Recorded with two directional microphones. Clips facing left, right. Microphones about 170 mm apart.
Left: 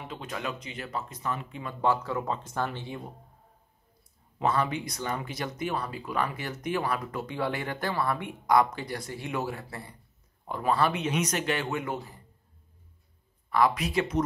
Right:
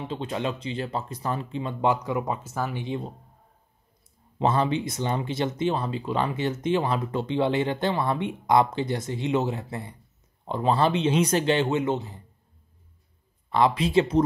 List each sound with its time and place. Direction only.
0.0 s speech: 30° right (ahead or behind); by 2.8 s 5° right (ahead or behind)
2.8 s speech: 20° right (ahead or behind)
4.4 s speech: 25° right (ahead or behind)
13.5 s speech: 25° right (ahead or behind)